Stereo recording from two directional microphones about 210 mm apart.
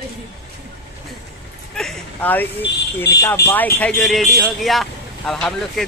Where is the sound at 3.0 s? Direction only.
10° left (ahead or behind).